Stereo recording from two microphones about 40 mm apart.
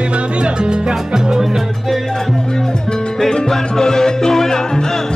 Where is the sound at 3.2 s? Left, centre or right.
Centre.